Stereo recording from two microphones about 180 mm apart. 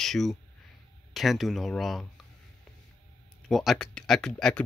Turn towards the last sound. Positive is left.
turn(degrees=5)  # may be behind; listen again after turning